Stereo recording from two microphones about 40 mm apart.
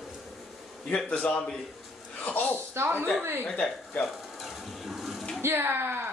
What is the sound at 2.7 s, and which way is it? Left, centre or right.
Speech, right.